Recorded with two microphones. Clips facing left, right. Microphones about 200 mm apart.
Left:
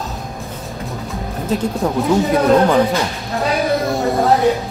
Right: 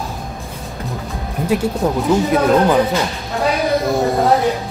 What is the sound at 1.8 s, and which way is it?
Speech, 5° right (ahead or behind).